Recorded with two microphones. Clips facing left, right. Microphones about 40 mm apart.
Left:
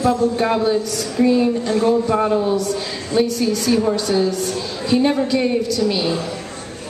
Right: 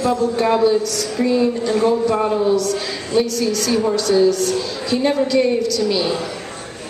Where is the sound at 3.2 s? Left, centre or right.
Centre.